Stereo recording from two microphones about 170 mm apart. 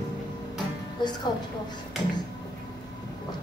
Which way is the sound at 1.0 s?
25° left (ahead or behind).